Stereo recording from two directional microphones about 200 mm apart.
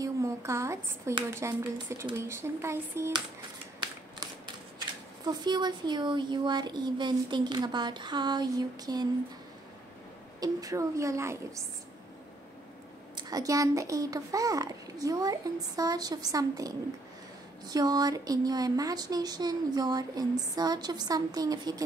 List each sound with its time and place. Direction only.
0.0 s a woman's voice: 15° right (ahead or behind)
4.7 s speech: 20° right (ahead or behind)
10.4 s a child's voice: 15° right (ahead or behind)
13.1 s a child's voice: 20° right (ahead or behind)